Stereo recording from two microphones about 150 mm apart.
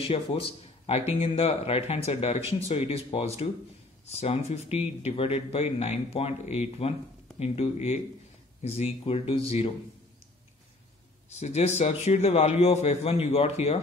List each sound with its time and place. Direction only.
0.0 s speech: 40° left (ahead or behind)
11.2 s speech: 45° left (ahead or behind)